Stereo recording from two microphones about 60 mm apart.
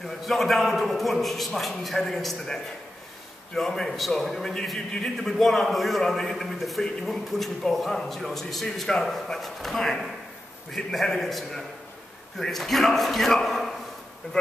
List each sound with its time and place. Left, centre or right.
0.0 s a man's voice: centre